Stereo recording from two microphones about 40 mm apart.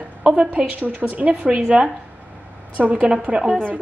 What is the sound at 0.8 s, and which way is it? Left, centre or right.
Speech, right.